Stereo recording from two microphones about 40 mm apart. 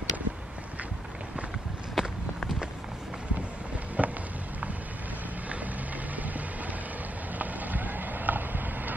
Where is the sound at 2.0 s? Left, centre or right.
Centre.